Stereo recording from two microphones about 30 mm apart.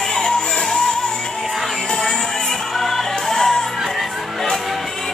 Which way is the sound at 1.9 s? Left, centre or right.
Left.